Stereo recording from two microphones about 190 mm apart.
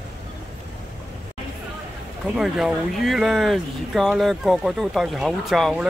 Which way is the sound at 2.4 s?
Centre (ahead or behind).